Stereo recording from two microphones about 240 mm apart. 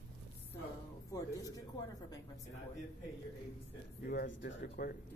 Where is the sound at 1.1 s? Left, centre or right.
Centre.